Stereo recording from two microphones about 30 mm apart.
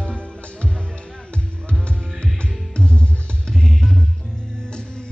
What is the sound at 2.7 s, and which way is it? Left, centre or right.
Music, left.